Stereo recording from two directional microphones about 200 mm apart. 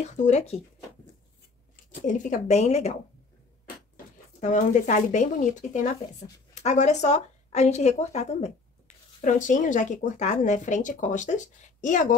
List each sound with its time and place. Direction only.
0.0 s speech: 35° left (ahead or behind)
2.0 s speech: 40° left (ahead or behind)